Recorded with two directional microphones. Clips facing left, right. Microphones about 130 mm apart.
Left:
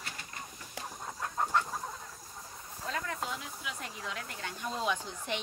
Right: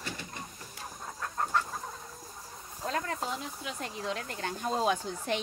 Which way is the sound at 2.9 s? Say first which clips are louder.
Right 3 dB; 40° right (ahead or behind).